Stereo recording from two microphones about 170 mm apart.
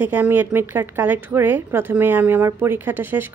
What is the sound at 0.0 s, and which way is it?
A woman's voice, 10° right (ahead or behind).